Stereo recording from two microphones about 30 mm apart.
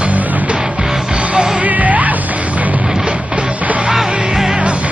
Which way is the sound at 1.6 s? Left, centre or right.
Right.